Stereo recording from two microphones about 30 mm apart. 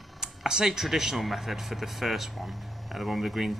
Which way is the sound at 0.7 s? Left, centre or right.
Centre.